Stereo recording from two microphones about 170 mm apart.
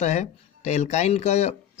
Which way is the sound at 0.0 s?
40° left (ahead or behind).